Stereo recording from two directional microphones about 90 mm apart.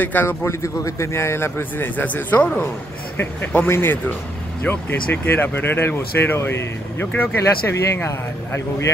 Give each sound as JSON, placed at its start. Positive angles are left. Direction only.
{"t": 0.0, "sound": "a man's voice", "side_deg": 20}